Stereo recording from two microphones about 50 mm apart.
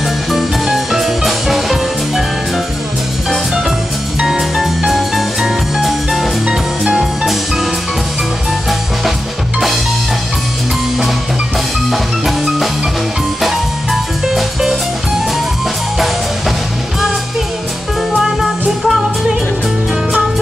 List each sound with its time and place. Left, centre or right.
0.3 s music: centre
4.2 s music: centre
6.4 s music: centre
11.9 s music: centre
14.2 s music: centre
18.2 s music: centre